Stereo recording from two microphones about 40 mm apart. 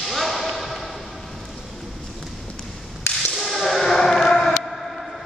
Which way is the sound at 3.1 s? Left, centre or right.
Left.